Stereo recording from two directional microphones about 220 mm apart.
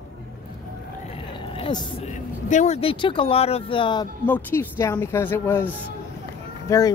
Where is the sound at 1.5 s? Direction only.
25° left (ahead or behind).